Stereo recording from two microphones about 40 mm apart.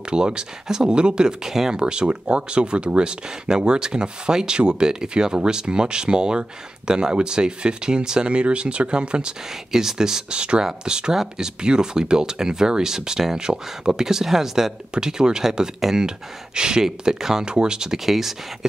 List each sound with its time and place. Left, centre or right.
0.1 s speech: right
1.8 s speech: right
9.7 s speech: centre
17.9 s speech: centre